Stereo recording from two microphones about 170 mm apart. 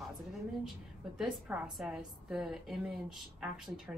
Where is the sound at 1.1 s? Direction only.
5° right (ahead or behind).